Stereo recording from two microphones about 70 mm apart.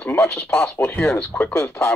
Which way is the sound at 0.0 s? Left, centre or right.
Left.